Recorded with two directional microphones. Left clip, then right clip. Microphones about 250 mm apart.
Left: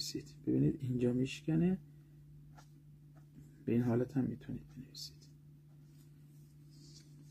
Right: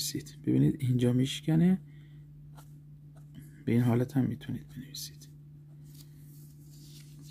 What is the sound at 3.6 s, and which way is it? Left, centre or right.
Speech, right.